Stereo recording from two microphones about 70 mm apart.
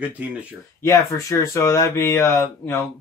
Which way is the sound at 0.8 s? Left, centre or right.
Left.